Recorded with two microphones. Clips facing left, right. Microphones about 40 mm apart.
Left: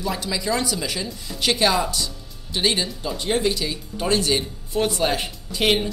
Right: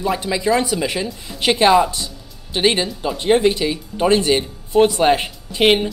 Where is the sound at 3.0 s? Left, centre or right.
Right.